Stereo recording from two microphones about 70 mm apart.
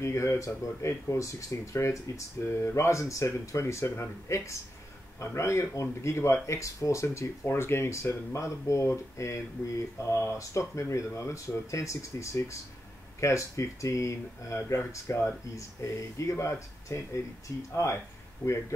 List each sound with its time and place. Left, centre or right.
0.0 s speech: left